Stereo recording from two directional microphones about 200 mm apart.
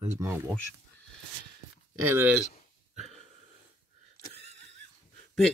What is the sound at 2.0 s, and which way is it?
Speech, 10° right (ahead or behind).